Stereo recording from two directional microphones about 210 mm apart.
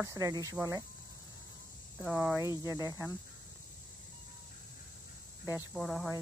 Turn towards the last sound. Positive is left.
turn(degrees=0)  # may be behind; listen again after turning